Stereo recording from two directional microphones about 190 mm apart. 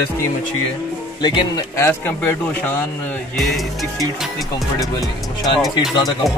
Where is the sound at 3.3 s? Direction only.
Centre (ahead or behind).